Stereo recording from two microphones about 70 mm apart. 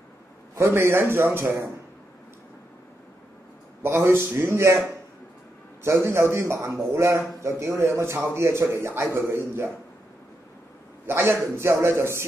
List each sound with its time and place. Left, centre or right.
0.6 s a man's voice: right
3.8 s a man's voice: right
5.9 s a man's voice: right
11.1 s a man's voice: right